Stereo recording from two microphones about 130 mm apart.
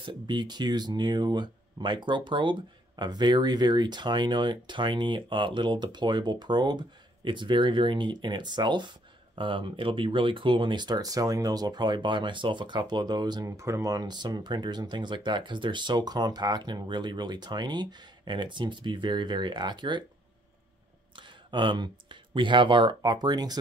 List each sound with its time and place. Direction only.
0.0 s speech: 40° right (ahead or behind)
21.2 s speech: 35° right (ahead or behind)